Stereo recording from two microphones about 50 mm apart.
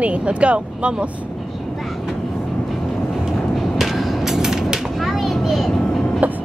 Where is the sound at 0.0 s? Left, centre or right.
Right.